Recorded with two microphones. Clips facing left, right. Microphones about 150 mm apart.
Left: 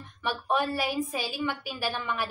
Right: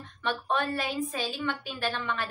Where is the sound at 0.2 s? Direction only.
10° left (ahead or behind).